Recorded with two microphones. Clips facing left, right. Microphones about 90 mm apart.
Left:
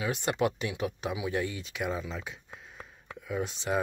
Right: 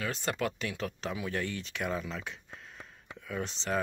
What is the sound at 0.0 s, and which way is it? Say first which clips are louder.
Speech: left 4 dB; 15° left (ahead or behind).